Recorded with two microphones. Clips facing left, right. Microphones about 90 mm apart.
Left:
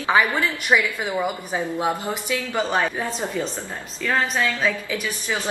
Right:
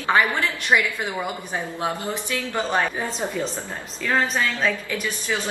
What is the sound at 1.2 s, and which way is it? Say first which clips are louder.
A woman's voice: left 3 dB; 15° left (ahead or behind).